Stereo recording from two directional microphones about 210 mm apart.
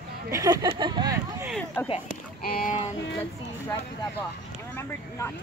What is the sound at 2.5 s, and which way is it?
Speech, 40° left (ahead or behind).